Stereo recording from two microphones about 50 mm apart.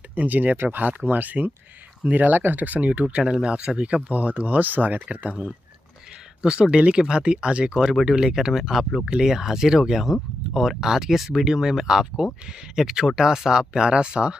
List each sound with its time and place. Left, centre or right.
0.1 s speech: right
5.0 s speech: right